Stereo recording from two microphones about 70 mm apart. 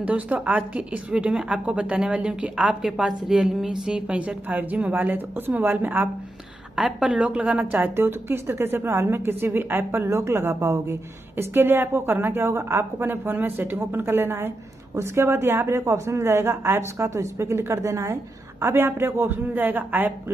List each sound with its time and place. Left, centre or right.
0.0 s a woman's voice: right
6.7 s a woman's voice: centre; by 20.1 s right